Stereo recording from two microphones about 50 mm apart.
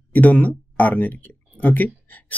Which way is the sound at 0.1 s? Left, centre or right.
Left.